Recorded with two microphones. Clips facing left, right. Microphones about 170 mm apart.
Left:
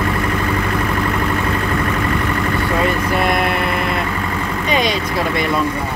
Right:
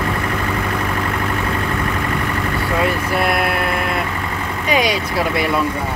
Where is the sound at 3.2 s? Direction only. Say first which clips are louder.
Even; 5° right (ahead or behind).